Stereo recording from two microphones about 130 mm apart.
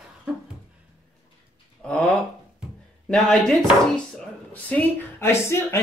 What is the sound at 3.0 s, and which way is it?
Speech, 5° left (ahead or behind).